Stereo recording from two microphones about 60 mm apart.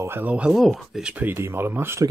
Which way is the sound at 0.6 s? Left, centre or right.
Centre.